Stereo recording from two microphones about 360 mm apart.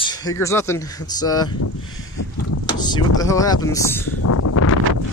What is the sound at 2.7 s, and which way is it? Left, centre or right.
Speech, centre.